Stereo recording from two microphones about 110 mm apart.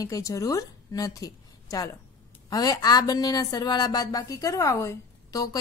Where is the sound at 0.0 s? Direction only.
30° left (ahead or behind).